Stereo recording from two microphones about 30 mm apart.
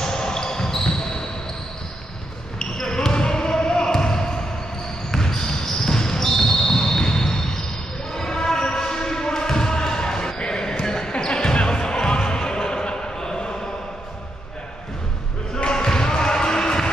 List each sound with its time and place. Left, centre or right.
0.0 s basketball bounce: centre
2.6 s basketball bounce: left
15.5 s basketball bounce: left